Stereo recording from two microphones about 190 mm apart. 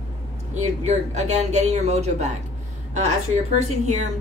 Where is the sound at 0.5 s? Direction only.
40° right (ahead or behind).